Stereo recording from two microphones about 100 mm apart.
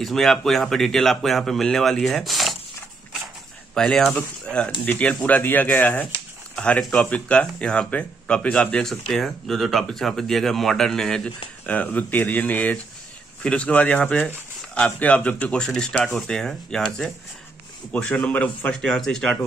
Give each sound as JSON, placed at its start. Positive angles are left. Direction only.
{"t": 0.0, "sound": "speech", "side_deg": 5}
{"t": 3.7, "sound": "speech", "side_deg": 5}